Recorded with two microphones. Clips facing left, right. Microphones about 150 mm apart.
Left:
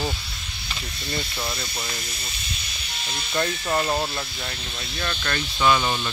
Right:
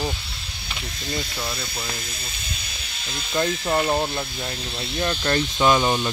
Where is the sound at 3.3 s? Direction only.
20° right (ahead or behind).